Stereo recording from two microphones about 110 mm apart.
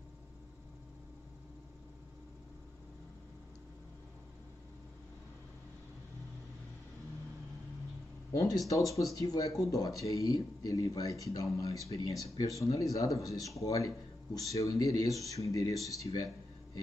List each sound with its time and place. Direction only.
8.3 s speech: 35° left (ahead or behind)